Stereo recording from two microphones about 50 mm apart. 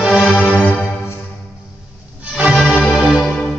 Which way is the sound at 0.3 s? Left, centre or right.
Left.